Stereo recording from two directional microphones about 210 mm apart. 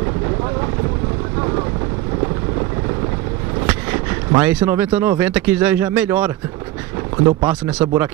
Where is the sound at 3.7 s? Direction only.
10° right (ahead or behind).